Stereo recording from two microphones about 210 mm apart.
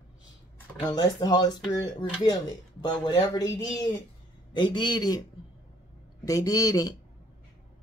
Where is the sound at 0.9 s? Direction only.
20° left (ahead or behind).